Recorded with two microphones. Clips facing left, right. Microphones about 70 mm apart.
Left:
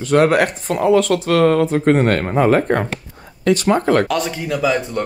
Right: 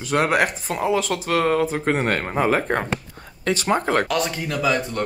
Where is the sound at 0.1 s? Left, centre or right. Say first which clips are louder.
Left 6 dB; centre.